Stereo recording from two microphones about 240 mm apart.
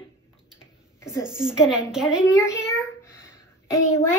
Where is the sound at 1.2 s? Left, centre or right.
Centre.